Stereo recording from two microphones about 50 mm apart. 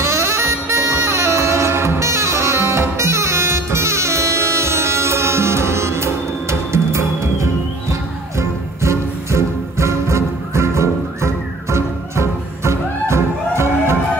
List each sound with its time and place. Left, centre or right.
0.0 s music: right